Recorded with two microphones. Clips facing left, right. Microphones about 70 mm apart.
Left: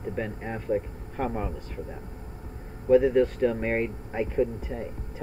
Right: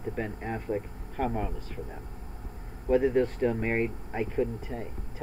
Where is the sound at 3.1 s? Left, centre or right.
Centre.